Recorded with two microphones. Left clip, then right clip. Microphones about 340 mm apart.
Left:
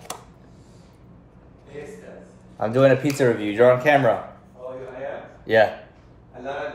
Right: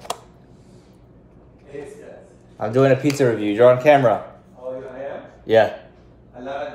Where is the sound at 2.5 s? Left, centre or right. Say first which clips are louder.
Even; centre.